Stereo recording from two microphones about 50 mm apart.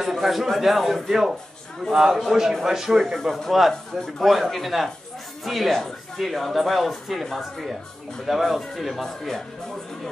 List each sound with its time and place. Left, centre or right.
0.0 s a man's voice: centre